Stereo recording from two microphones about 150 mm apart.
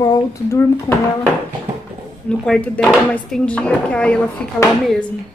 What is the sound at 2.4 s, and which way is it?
A woman's voice, 5° left (ahead or behind).